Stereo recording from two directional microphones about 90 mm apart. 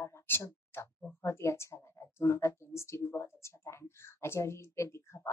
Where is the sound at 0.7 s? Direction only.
25° left (ahead or behind).